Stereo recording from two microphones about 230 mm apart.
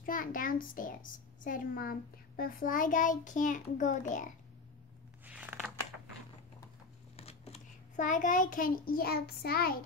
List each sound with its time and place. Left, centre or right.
0.0 s a child's voice: left
5.2 s a sound: centre
7.2 s a child's voice: left